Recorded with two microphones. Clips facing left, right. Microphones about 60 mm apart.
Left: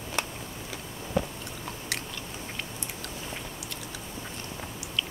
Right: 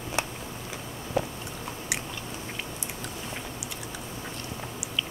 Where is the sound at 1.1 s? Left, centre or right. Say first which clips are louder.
Right 1 dB; centre.